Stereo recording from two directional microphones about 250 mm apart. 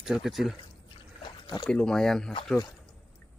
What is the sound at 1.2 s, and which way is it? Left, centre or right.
Rowboat, centre.